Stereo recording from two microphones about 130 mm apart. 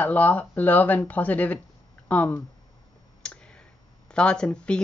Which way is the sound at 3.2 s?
10° left (ahead or behind).